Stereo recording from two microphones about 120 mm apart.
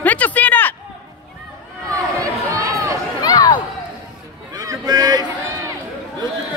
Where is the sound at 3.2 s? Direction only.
35° left (ahead or behind).